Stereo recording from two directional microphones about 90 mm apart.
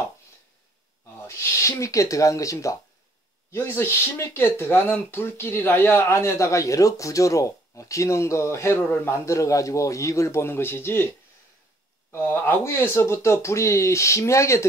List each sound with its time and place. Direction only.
1.2 s speech: 30° left (ahead or behind)
3.5 s speech: 25° left (ahead or behind)